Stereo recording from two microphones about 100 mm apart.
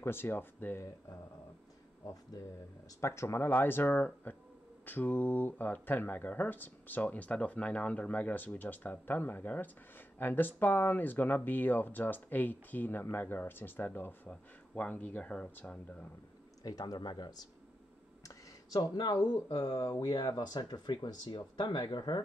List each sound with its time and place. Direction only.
0.0 s speech: 25° left (ahead or behind)
3.0 s speech: 30° left (ahead or behind)
16.6 s speech: 40° left (ahead or behind)
18.2 s a sound: 35° left (ahead or behind)
19.2 s speech: 40° left (ahead or behind)